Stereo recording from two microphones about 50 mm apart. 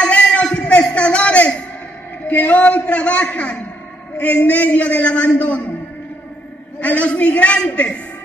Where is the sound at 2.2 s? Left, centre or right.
Left.